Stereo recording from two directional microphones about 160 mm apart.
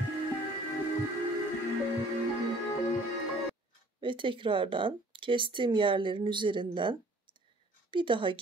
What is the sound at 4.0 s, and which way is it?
Speech, 30° right (ahead or behind).